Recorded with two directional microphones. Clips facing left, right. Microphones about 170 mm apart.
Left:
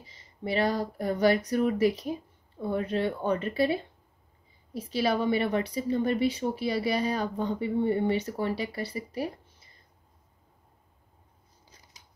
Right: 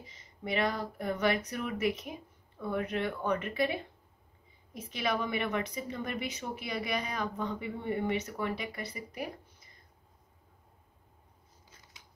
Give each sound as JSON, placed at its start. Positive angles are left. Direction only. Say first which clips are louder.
{"t": 0.0, "sound": "a woman's voice", "louder": "left 5 dB", "side_deg": 30}